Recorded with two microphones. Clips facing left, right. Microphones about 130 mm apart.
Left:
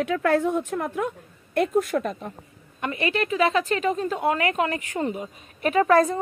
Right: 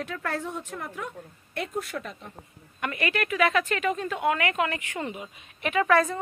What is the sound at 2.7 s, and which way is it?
A woman's voice, 30° left (ahead or behind).